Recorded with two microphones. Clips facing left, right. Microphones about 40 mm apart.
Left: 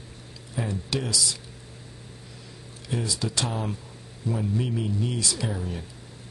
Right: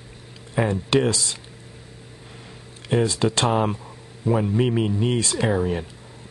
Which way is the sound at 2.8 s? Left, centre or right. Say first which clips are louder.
Right 9 dB; right.